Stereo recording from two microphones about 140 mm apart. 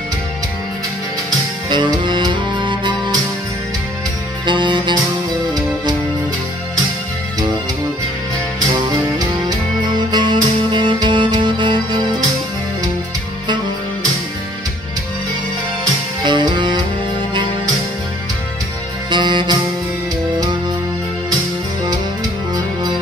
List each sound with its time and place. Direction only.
1.7 s music: 35° right (ahead or behind)
4.5 s music: 35° right (ahead or behind)
9.9 s music: 30° right (ahead or behind)
16.2 s music: 35° right (ahead or behind)
19.0 s music: 35° right (ahead or behind)